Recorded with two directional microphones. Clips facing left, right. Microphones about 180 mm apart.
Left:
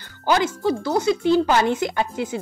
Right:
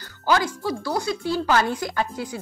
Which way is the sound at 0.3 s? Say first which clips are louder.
Left 3 dB; 20° left (ahead or behind).